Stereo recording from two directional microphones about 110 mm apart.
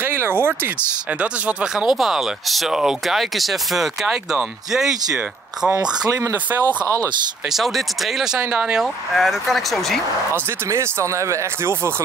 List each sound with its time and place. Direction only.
0.0 s a sound: 20° right (ahead or behind)
1.2 s speech: 10° right (ahead or behind)
6.6 s speech: 15° left (ahead or behind)
7.5 s speech: centre (ahead or behind)
10.7 s speech: 25° right (ahead or behind)